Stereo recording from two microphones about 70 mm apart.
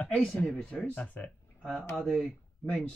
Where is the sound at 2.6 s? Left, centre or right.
Centre.